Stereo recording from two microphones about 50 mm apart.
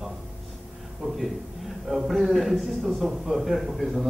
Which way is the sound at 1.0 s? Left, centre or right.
Centre.